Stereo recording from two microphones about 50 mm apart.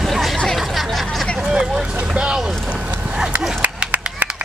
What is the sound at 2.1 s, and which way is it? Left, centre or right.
Boat, centre.